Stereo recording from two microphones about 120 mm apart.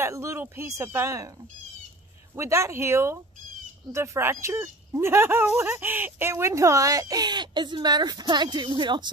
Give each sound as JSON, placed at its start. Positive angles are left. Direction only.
{"t": 0.0, "sound": "speech", "side_deg": -25}
{"t": 2.3, "sound": "speech", "side_deg": -25}